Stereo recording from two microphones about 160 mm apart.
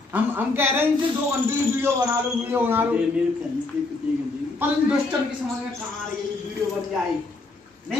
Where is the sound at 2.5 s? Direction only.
10° right (ahead or behind).